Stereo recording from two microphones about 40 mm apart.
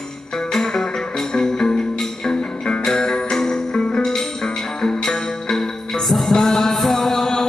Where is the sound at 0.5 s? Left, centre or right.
Centre.